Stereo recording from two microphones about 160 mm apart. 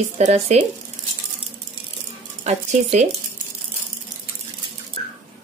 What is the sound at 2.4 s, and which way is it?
Speech, 50° right (ahead or behind).